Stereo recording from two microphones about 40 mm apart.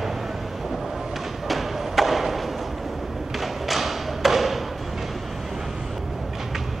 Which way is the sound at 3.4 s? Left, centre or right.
Centre.